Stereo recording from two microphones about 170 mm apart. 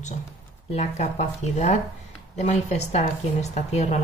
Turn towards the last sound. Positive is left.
turn(degrees=40)  # may be behind; listen again after turning